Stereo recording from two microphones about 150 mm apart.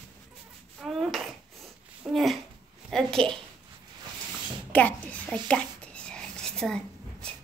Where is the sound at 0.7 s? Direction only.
Centre (ahead or behind).